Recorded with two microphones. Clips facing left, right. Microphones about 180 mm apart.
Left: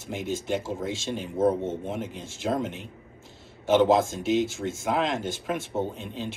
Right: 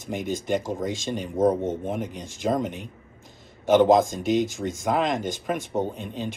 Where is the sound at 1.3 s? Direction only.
15° right (ahead or behind).